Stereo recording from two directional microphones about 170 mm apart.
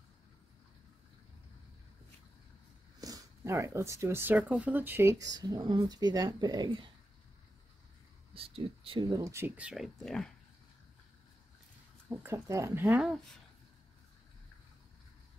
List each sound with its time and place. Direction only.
3.0 s speech: 20° right (ahead or behind)
8.4 s speech: 35° right (ahead or behind)
9.0 s speech: 20° right (ahead or behind); by 10.3 s centre (ahead or behind)
12.1 s speech: 15° right (ahead or behind)